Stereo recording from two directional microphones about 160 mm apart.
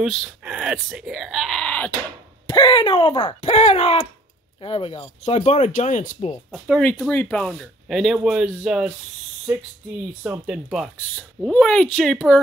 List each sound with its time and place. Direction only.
0.0 s speech: centre (ahead or behind)
2.5 s speech: 30° left (ahead or behind)
3.3 s speech: 40° left (ahead or behind)
6.5 s speech: 5° left (ahead or behind)
10.2 s speech: 5° right (ahead or behind)